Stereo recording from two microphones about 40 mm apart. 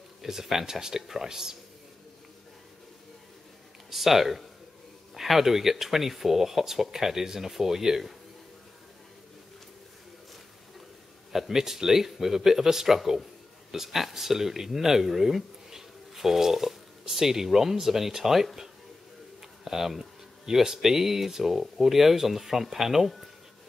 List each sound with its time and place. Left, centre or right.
0.2 s speech: centre
3.9 s speech: centre
11.3 s speech: centre